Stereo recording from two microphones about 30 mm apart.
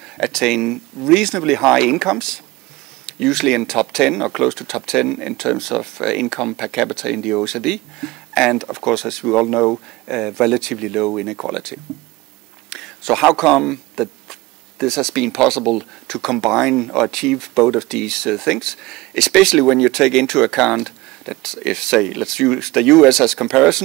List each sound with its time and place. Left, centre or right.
0.0 s speech: centre